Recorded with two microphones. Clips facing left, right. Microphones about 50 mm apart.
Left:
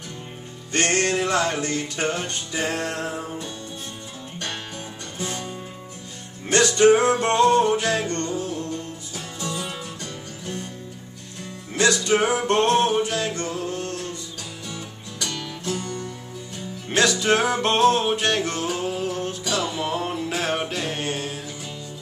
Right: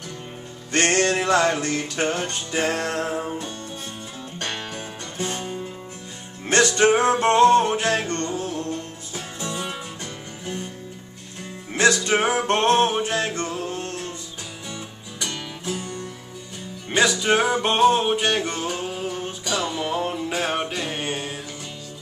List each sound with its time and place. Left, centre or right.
0.7 s music: right
4.4 s music: right
6.5 s music: right
11.7 s music: right
14.7 s music: centre